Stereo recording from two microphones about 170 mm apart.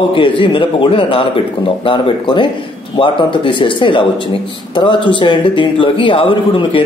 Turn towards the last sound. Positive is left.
turn(degrees=30)  # may be behind; listen again after turning